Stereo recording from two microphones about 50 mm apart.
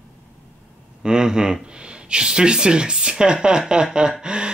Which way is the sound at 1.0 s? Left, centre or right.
Centre.